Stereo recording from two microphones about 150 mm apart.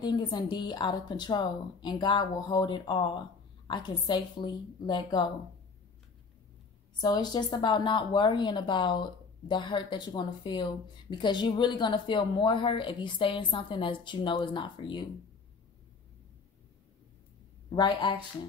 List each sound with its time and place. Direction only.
0.0 s a woman's voice: 30° left (ahead or behind)
7.0 s speech: 30° left (ahead or behind)
17.6 s speech: 30° left (ahead or behind)